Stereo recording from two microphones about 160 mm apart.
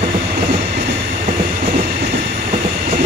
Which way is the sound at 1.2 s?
50° right (ahead or behind).